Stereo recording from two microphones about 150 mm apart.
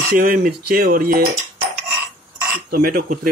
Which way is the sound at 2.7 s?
80° right.